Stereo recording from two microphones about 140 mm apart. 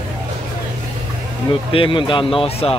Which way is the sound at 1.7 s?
35° left (ahead or behind).